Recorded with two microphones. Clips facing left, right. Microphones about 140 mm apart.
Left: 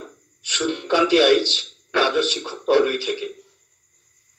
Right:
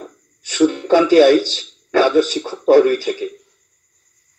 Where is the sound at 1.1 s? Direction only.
40° right (ahead or behind).